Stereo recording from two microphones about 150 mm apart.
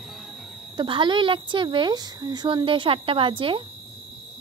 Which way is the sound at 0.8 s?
30° right (ahead or behind).